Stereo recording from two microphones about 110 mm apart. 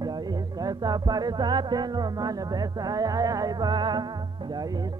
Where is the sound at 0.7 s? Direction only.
35° right (ahead or behind).